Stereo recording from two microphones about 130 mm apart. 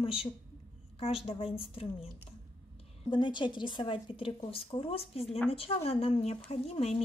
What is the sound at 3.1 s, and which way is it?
A woman's voice, 40° left (ahead or behind).